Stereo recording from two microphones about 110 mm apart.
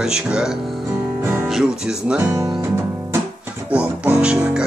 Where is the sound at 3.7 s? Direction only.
10° right (ahead or behind).